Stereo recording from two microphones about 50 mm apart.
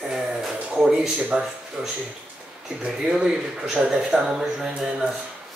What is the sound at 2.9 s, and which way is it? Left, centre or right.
Speech, centre.